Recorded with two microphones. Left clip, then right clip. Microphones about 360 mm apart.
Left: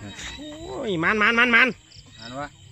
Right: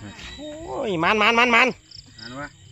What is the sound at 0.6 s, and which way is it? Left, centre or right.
A man's voice, centre.